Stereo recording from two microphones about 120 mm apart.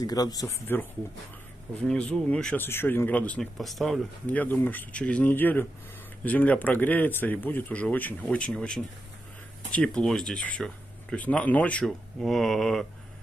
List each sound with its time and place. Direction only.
0.0 s speech: 30° left (ahead or behind)
1.8 s speech: 10° left (ahead or behind)
3.5 s speech: centre (ahead or behind)
4.3 s speech: 15° left (ahead or behind)